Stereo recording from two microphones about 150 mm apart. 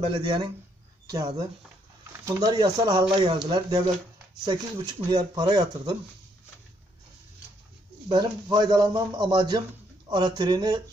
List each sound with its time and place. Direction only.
0.0 s speech: 30° right (ahead or behind)
2.2 s speech: 25° right (ahead or behind)
8.1 s speech: 30° right (ahead or behind)